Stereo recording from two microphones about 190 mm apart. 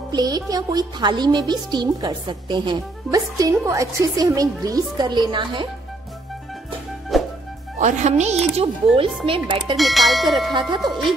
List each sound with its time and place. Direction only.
0.1 s speech: 20° right (ahead or behind)
7.1 s music: centre (ahead or behind)
7.8 s speech: 40° right (ahead or behind)
9.8 s speech: centre (ahead or behind)